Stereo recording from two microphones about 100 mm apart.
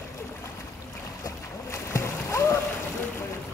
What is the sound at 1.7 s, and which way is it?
Splash, 30° left (ahead or behind).